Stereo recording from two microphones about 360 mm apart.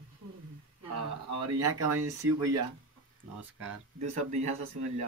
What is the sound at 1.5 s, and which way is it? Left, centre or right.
Speech, right.